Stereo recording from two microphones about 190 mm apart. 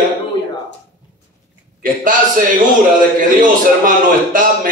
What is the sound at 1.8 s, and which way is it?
A man's voice, 45° right (ahead or behind).